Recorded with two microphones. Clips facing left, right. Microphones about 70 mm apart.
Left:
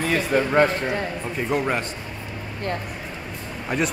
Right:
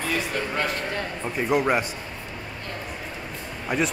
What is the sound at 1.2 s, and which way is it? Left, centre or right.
Speech, centre.